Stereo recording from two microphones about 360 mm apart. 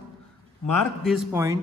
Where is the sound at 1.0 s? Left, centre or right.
Centre.